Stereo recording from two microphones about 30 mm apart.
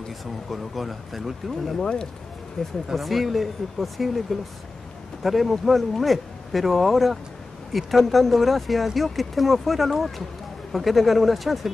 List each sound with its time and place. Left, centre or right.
0.5 s speech: centre
1.8 s speech: left
2.9 s speech: centre